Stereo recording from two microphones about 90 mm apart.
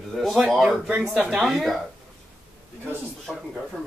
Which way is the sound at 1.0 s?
15° right (ahead or behind).